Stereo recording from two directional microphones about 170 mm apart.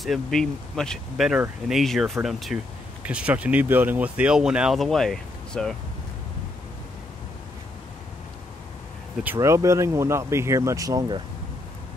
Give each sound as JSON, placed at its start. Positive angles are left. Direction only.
{"t": 0.0, "sound": "speech", "side_deg": 0}
{"t": 9.2, "sound": "speech", "side_deg": -15}